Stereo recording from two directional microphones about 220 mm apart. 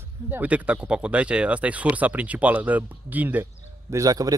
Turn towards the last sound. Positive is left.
turn(degrees=-15)  # may be behind; listen again after turning